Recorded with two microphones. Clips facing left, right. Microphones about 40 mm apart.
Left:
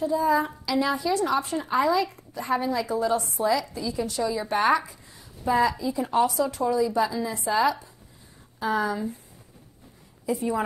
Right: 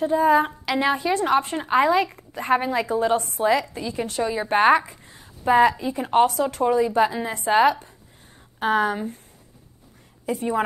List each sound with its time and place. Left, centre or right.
0.0 s a woman's voice: right
10.2 s a woman's voice: right